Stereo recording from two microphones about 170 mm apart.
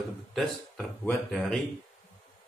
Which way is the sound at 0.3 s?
Centre (ahead or behind).